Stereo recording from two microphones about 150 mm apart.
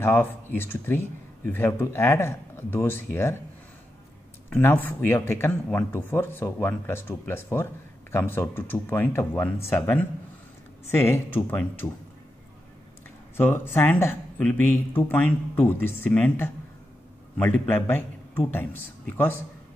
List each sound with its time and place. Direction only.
0.0 s speech: 15° left (ahead or behind)
4.6 s speech: 15° left (ahead or behind)
13.4 s a man's voice: 15° left (ahead or behind)